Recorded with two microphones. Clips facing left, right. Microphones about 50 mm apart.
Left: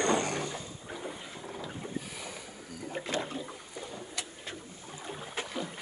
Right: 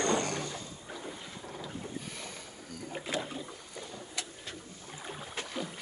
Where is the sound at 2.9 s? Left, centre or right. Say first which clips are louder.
Left 2 dB; centre.